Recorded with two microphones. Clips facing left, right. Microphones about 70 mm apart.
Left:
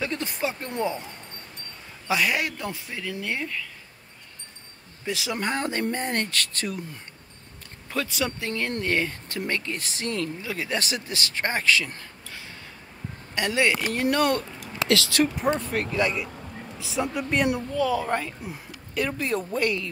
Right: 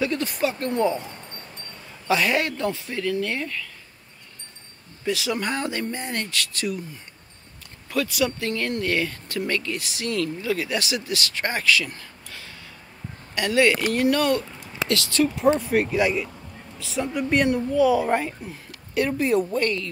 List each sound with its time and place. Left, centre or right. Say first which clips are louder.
0.0 s speech: right 4 dB; left
2.0 s speech: right 3 dB; centre
5.0 s speech: right 4 dB; left
5.4 s speech: even; left
7.9 s speech: right 4 dB; left
10.7 s speech: right 3 dB; left
14.1 s speech: right 1 dB; left
14.6 s a sound: left 2 dB; left
15.5 s speech: right 5 dB; centre
16.8 s speech: right 2 dB; centre
17.7 s speech: right 7 dB; centre
19.6 s speech: right 1 dB; centre